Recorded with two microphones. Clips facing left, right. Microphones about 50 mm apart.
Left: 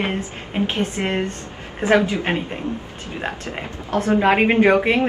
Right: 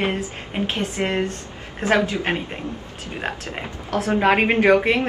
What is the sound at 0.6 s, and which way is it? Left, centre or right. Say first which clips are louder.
Speech: even; left.